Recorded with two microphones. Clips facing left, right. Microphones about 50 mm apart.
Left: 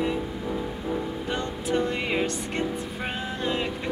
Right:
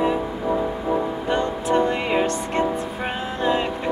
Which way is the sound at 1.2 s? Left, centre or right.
Centre.